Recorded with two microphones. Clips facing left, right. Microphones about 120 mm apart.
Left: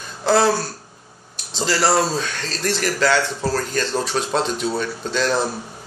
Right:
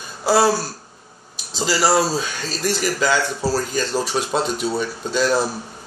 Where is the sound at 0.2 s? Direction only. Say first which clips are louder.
Even; 5° right (ahead or behind).